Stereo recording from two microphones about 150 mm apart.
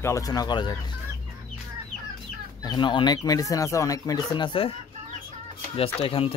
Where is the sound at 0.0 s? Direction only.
20° left (ahead or behind).